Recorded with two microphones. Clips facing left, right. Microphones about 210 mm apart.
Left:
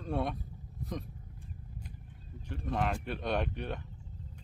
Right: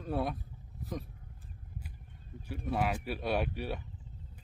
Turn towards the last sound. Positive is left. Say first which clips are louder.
# right 1 dB
turn(degrees=-5)  # may be behind; listen again after turning